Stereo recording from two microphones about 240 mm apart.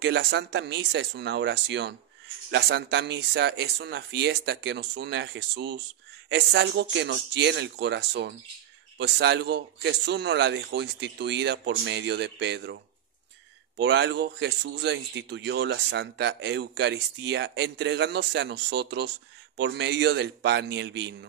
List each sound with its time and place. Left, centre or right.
0.0 s speech: right
13.7 s speech: right